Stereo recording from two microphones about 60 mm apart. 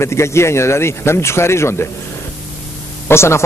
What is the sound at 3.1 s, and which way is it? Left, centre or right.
Speech, left.